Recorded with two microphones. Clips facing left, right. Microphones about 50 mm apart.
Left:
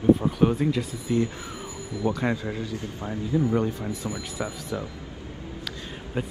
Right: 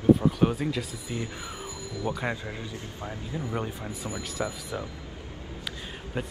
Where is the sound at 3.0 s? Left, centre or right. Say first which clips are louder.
Left 10 dB; left.